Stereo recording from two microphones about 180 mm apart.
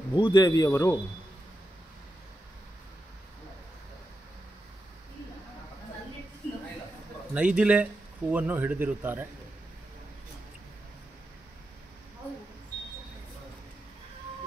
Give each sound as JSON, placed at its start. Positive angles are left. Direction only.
{"t": 0.1, "sound": "a man's voice", "side_deg": 25}
{"t": 7.3, "sound": "speech", "side_deg": -5}